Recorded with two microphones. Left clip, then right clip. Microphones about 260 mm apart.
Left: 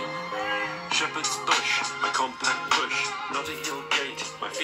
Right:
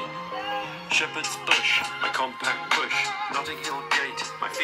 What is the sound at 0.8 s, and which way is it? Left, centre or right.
Music, right.